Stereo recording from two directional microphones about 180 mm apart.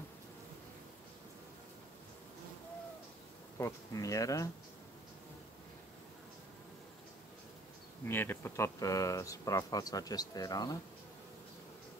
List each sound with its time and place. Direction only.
3.5 s speech: 15° left (ahead or behind)
8.1 s speech: 10° left (ahead or behind)